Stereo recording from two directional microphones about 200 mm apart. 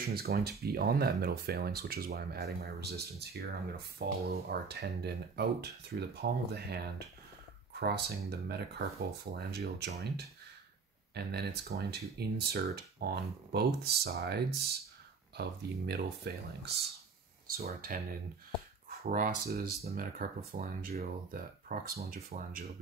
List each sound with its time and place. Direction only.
0.1 s speech: 50° right (ahead or behind)
7.8 s speech: 55° right (ahead or behind)
17.6 s speech: 50° right (ahead or behind)